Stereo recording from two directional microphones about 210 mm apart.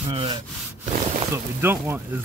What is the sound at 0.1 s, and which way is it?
Sawing, 20° right (ahead or behind).